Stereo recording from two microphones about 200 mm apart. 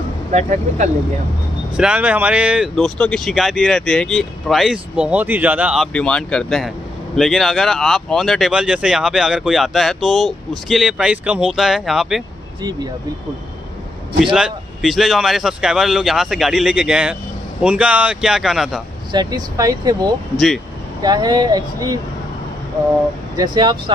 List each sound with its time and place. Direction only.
0.3 s speech: 35° right (ahead or behind)
1.8 s speech: 5° right (ahead or behind)
5.9 s speech: 5° left (ahead or behind)
14.2 s speech: centre (ahead or behind)
19.1 s speech: 20° right (ahead or behind)
20.3 s speech: centre (ahead or behind)
21.0 s speech: 20° right (ahead or behind)
23.3 s speech: 20° right (ahead or behind)